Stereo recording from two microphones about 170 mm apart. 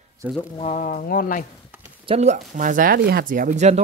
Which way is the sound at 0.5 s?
45° left (ahead or behind).